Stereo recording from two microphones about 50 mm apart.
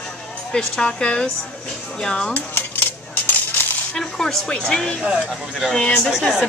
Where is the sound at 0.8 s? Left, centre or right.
Left.